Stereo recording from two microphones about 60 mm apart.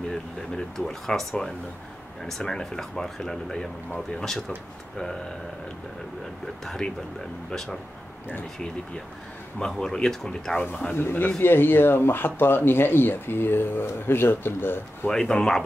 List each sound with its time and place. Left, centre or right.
0.6 s speech: centre
6.6 s speech: centre
9.6 s speech: centre
11.0 s speech: left
15.0 s speech: centre